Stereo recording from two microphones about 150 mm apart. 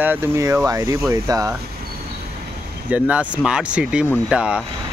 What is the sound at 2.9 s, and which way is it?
Speech, 10° right (ahead or behind).